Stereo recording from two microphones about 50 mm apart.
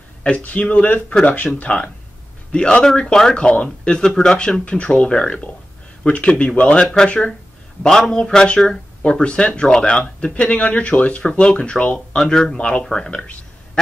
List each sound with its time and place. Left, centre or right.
0.4 s speech: left
2.5 s speech: centre
4.6 s speech: left